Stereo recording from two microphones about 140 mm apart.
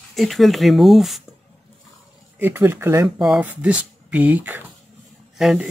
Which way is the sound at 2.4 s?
15° right (ahead or behind).